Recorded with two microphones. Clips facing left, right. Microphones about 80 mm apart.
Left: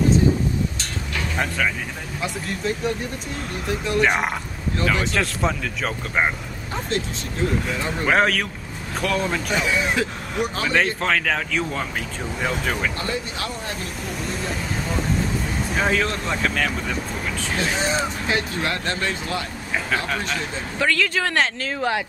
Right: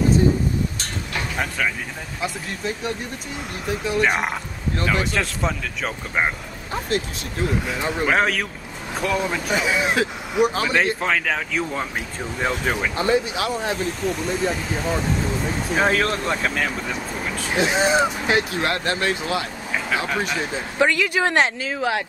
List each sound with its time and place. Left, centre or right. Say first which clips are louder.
1.3 s speech: left 2 dB; centre
14.0 s speech: right 5 dB; centre
15.7 s speech: right 2 dB; centre
17.3 s speech: right 4 dB; centre
21.6 s speech: even; centre